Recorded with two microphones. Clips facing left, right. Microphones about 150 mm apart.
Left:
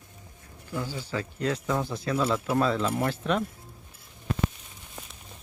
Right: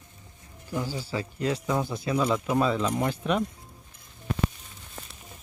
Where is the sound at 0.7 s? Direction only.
15° right (ahead or behind).